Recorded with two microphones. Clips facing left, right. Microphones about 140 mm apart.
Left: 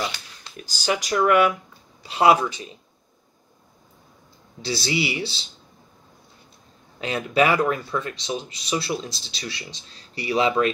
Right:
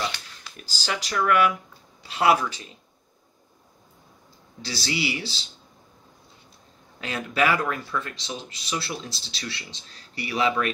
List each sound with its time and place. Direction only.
0.6 s speech: 15° left (ahead or behind)
4.6 s speech: 20° left (ahead or behind)
7.0 s speech: 20° left (ahead or behind)